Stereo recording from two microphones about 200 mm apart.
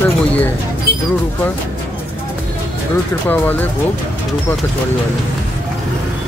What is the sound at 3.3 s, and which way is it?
Speech, 10° left (ahead or behind).